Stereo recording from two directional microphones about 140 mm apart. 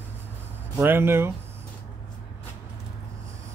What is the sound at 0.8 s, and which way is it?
Speech, 15° right (ahead or behind).